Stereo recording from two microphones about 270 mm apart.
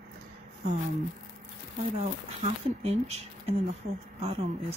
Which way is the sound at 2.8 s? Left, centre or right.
Right.